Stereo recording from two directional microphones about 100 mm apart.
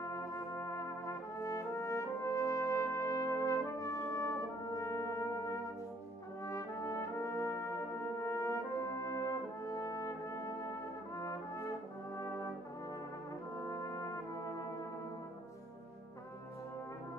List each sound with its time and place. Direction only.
0.0 s brass instrument: 30° left (ahead or behind)
13.6 s brass instrument: 35° left (ahead or behind)